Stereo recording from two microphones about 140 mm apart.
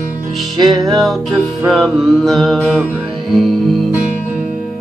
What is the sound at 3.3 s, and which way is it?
Music, centre (ahead or behind).